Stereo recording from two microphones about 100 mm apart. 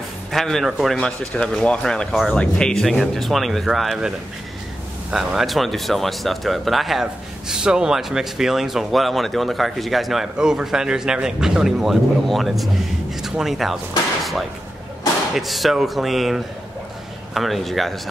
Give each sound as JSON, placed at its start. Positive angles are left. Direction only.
{"t": 0.3, "sound": "speech", "side_deg": 0}
{"t": 5.1, "sound": "speech", "side_deg": -5}
{"t": 15.3, "sound": "speech", "side_deg": 0}